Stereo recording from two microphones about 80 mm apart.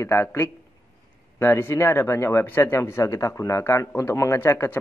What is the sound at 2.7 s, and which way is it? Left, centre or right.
Speech, left.